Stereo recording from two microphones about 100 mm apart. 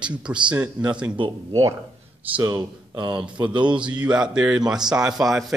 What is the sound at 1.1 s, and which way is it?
Speech, 55° right (ahead or behind).